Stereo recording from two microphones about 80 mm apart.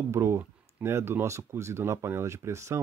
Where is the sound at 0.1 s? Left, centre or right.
Right.